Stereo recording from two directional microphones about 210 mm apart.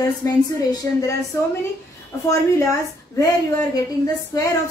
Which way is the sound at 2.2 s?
15° left (ahead or behind).